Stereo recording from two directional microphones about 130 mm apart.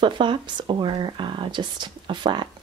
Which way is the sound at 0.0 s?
40° right (ahead or behind).